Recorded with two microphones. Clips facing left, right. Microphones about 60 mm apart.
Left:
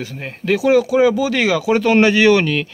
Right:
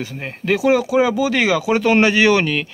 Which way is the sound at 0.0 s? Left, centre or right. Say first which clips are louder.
Even; centre.